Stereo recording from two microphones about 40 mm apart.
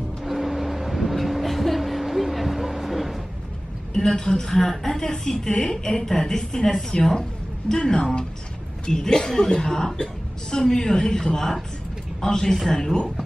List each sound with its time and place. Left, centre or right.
0.2 s vehicle: centre
3.9 s a woman's voice: centre